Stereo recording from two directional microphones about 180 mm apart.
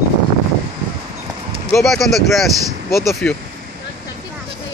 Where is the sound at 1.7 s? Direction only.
Centre (ahead or behind).